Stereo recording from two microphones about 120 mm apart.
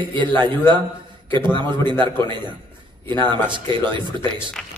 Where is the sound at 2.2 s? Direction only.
40° right (ahead or behind).